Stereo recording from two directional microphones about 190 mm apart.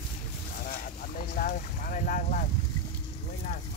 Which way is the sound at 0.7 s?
45° left (ahead or behind).